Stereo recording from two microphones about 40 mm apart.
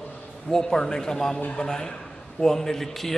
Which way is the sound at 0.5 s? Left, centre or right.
Centre.